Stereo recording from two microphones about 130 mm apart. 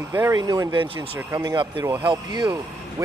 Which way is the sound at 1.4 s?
35° right (ahead or behind).